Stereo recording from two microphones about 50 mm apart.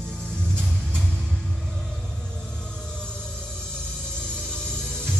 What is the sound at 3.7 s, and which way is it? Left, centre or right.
Music, centre.